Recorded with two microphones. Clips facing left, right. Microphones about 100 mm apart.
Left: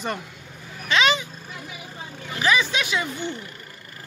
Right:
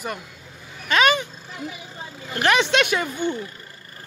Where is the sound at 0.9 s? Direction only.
50° right (ahead or behind).